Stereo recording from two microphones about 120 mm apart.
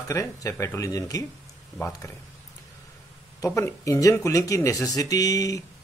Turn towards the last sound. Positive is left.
turn(degrees=30)  # may be behind; listen again after turning